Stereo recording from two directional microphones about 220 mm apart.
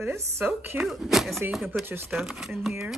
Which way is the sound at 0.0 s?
10° right (ahead or behind).